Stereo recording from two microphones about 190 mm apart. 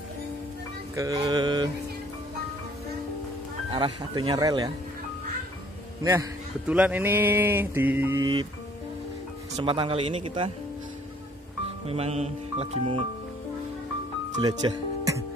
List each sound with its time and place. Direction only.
0.9 s speech: 20° right (ahead or behind)
3.7 s speech: 25° right (ahead or behind)
6.7 s mantra: 10° right (ahead or behind)
8.2 s speech: 20° right (ahead or behind)
9.6 s speech: 25° right (ahead or behind)
11.8 s speech: 30° right (ahead or behind)
14.6 s speech: 25° right (ahead or behind)